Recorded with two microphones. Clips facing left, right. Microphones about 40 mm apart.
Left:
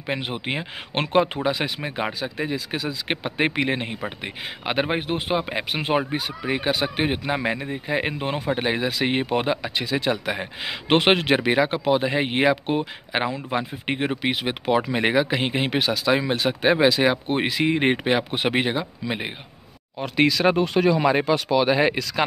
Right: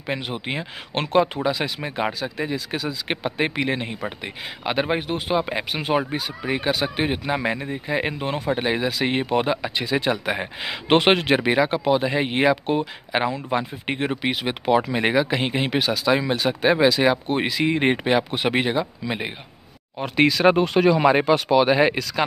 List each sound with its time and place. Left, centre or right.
0.2 s speech: left
1.8 s speech: centre
5.5 s speech: centre
7.3 s speech: centre
10.2 s speech: centre
10.6 s speech: centre
20.0 s speech: centre
20.5 s speech: right
21.0 s speech: right
21.5 s speech: centre